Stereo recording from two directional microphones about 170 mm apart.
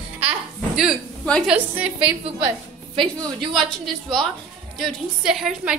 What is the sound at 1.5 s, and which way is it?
Speech, 5° right (ahead or behind).